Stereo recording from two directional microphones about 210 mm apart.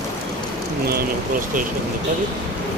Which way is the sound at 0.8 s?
45° right (ahead or behind).